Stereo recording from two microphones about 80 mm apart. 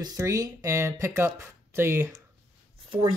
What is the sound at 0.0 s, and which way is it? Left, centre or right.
Speech, right.